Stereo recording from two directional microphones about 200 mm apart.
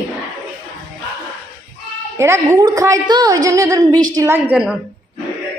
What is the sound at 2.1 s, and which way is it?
A woman's voice, 15° right (ahead or behind).